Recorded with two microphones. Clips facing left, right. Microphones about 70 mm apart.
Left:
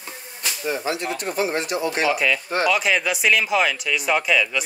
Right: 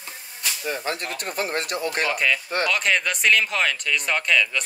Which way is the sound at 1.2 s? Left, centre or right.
Right.